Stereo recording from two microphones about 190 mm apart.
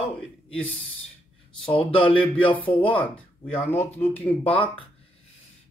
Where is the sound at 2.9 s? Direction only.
10° left (ahead or behind).